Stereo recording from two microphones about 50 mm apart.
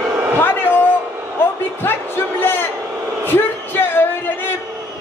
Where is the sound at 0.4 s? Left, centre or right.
Left.